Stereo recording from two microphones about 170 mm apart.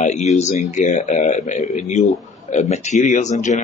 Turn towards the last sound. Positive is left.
turn(degrees=45)  # may be behind; listen again after turning